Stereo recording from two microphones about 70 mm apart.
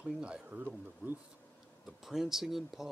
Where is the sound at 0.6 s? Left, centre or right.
Right.